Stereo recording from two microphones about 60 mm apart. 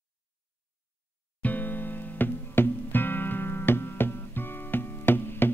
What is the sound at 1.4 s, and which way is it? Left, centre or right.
Music, left.